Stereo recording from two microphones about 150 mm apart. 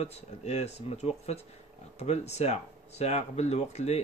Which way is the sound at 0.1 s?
45° left (ahead or behind).